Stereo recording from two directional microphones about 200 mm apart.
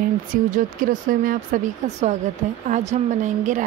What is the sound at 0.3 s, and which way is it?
A woman's voice, 45° right (ahead or behind).